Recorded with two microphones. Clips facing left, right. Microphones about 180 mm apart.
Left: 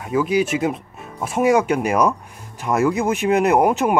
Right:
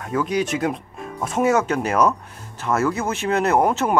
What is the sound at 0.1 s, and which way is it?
Speech, 10° left (ahead or behind).